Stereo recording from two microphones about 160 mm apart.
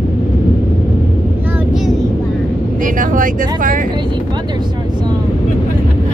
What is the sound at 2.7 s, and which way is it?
Vehicle, 55° right (ahead or behind).